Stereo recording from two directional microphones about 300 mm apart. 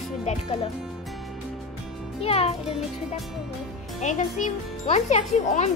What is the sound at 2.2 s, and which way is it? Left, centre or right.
Speech, centre.